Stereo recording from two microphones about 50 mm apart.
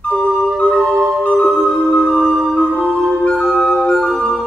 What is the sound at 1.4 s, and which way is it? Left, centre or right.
Music, centre.